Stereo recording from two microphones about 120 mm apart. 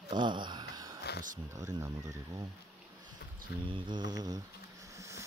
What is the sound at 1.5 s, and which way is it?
Speech, 30° right (ahead or behind).